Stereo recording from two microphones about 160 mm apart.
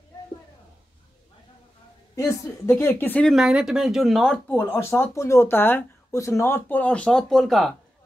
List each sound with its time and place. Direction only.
2.1 s speech: 20° left (ahead or behind)
3.3 s speech: 5° right (ahead or behind)
4.6 s speech: 15° left (ahead or behind)